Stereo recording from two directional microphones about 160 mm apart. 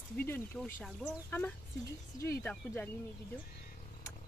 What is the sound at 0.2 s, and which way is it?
Speech, 15° left (ahead or behind).